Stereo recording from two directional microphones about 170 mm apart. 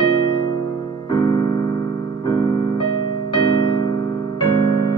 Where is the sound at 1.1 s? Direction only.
25° left (ahead or behind).